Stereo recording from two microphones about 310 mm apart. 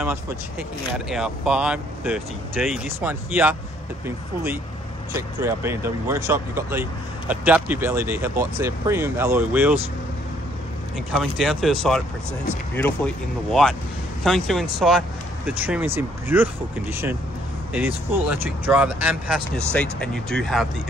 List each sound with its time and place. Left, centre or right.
0.0 s speech: centre
5.1 s speech: centre
11.1 s speech: centre